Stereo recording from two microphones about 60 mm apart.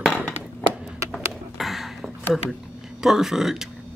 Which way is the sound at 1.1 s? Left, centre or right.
Centre.